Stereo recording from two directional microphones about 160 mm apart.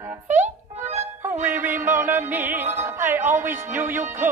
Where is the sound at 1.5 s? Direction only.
10° right (ahead or behind).